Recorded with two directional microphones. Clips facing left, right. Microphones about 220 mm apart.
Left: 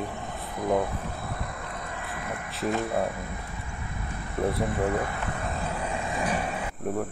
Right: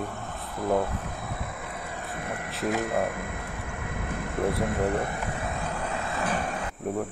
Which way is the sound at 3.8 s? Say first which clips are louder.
Right 6 dB; 70° right (ahead or behind).